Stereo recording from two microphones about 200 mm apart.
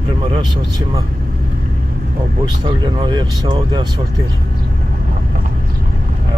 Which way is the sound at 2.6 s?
20° right (ahead or behind).